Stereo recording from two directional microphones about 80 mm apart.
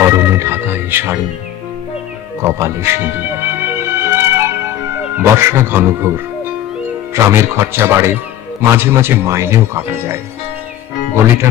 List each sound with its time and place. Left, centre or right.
0.0 s music: right
2.4 s music: right
5.1 s speech: right